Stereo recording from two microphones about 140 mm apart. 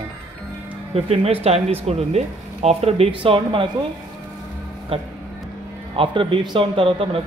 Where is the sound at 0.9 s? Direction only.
45° right (ahead or behind).